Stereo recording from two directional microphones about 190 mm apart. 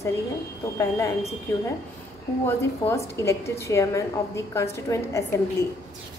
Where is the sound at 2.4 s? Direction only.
15° left (ahead or behind).